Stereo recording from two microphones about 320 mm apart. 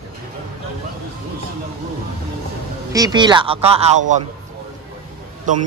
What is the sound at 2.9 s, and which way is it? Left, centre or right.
A man's voice, centre.